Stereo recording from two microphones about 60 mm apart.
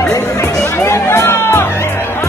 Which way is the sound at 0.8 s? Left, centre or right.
Left.